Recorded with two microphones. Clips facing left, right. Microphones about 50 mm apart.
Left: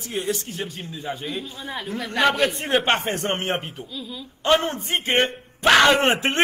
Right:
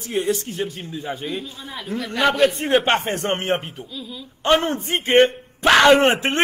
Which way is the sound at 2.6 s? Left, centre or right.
Centre.